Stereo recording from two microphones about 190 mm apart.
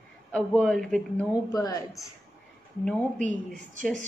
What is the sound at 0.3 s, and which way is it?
Speech, 5° left (ahead or behind).